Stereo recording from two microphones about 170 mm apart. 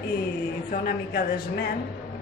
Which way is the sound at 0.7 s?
60° left (ahead or behind).